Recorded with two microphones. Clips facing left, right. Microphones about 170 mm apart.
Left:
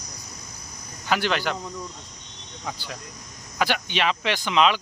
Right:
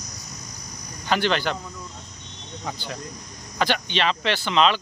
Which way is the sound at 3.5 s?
10° left (ahead or behind).